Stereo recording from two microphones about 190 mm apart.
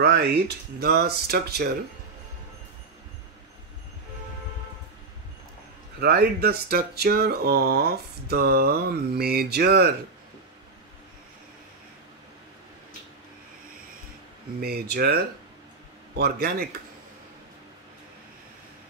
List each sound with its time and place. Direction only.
0.0 s speech: 60° right (ahead or behind)
5.9 s speech: 55° right (ahead or behind)
14.6 s speech: 55° right (ahead or behind)
16.2 s speech: 55° right (ahead or behind)